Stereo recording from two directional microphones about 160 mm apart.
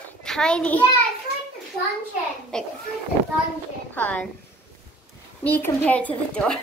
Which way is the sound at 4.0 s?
10° left (ahead or behind).